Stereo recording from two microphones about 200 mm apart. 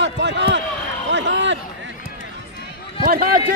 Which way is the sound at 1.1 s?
65° right (ahead or behind).